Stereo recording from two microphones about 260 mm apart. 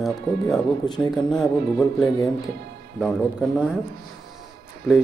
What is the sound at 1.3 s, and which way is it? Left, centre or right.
Speech, centre.